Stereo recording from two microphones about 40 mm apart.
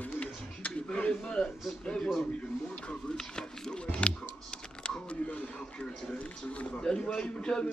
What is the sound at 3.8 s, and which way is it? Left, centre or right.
Music, left.